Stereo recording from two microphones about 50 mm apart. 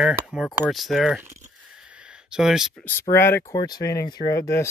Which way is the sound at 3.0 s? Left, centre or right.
Left.